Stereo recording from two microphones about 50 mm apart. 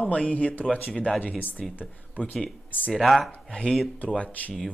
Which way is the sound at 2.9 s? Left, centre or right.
Centre.